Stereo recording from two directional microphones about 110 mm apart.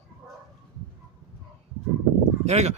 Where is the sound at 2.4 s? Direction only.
90° right.